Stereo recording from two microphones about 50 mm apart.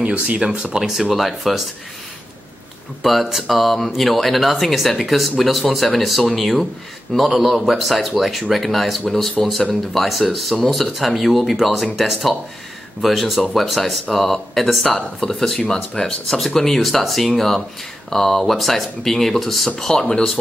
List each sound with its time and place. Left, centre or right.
0.0 s speech: right; by 1.6 s centre
3.0 s speech: centre
15.0 s speech: centre